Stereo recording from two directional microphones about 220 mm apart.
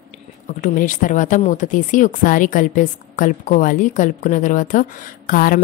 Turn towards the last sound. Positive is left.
turn(degrees=40)  # may be behind; listen again after turning